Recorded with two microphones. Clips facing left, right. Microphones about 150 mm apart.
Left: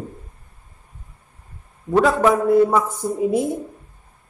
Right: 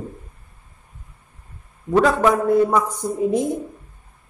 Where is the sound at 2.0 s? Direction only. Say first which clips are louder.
Left 2 dB; 5° left (ahead or behind).